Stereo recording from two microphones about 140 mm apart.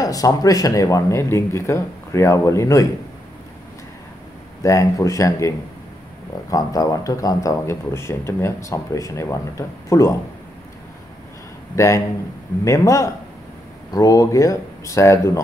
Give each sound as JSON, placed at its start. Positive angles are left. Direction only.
{"t": 0.0, "sound": "a man's voice", "side_deg": 25}
{"t": 4.6, "sound": "a man's voice", "side_deg": 20}
{"t": 6.5, "sound": "a man's voice", "side_deg": 25}
{"t": 11.7, "sound": "a man's voice", "side_deg": 20}